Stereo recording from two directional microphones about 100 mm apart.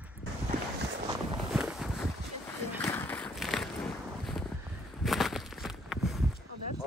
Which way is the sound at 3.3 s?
Centre (ahead or behind).